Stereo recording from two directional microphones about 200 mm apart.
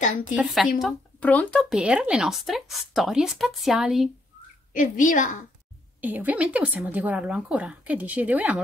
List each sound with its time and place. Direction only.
0.0 s a woman's voice: 40° left (ahead or behind)
0.7 s speech: 5° left (ahead or behind)
4.7 s a woman's voice: 40° left (ahead or behind)
5.9 s a woman's voice: 10° right (ahead or behind)